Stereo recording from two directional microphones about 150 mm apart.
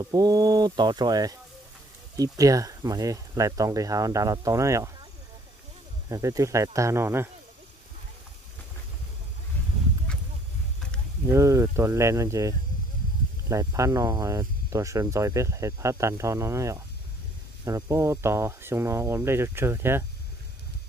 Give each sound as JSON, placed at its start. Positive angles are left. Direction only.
{"t": 0.0, "sound": "speech", "side_deg": -25}
{"t": 6.0, "sound": "speech", "side_deg": -20}
{"t": 11.3, "sound": "speech", "side_deg": -20}